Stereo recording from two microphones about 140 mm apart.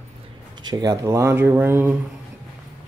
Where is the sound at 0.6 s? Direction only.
30° right (ahead or behind).